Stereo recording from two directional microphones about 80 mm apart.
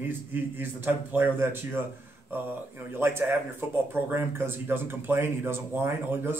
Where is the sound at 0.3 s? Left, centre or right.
Right.